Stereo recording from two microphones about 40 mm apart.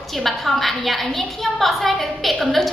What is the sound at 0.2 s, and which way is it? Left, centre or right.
A woman's voice, centre.